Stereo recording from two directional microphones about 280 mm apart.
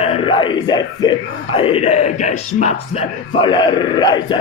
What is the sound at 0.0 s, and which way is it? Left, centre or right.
A man's voice, centre.